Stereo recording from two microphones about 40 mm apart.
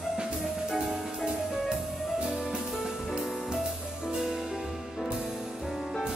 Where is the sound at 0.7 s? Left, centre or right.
Centre.